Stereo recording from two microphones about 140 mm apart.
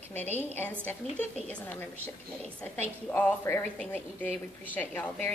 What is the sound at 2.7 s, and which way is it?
A woman's voice, 15° left (ahead or behind).